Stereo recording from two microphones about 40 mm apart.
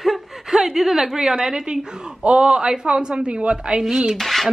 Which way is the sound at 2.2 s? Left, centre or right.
Right.